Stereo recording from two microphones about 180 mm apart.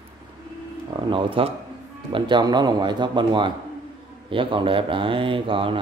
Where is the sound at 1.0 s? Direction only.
25° right (ahead or behind).